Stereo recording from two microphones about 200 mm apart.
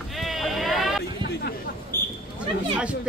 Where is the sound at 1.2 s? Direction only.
55° left (ahead or behind).